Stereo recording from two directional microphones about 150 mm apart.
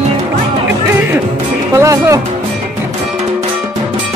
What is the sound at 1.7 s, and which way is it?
Music, 20° right (ahead or behind).